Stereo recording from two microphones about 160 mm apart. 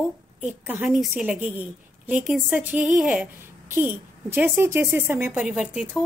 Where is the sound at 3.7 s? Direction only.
15° right (ahead or behind).